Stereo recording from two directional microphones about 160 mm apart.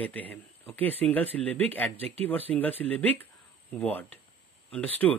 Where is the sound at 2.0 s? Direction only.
40° right (ahead or behind).